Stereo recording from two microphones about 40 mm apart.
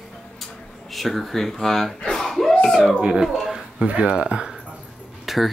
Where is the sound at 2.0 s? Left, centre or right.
Centre.